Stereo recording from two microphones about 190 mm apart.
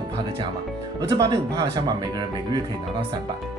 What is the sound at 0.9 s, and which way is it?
Speech, 20° right (ahead or behind).